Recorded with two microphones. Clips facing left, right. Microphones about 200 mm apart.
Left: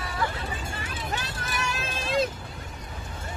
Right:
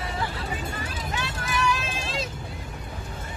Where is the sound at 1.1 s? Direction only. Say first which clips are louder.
Right 4 dB; 40° left (ahead or behind).